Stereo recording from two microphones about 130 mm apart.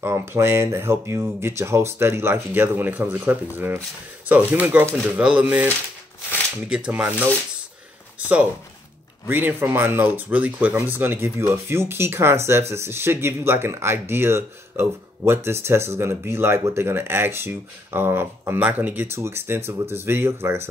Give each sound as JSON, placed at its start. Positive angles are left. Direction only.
{"t": 0.0, "sound": "speech", "side_deg": -20}
{"t": 6.7, "sound": "speech", "side_deg": -10}
{"t": 9.3, "sound": "speech", "side_deg": -15}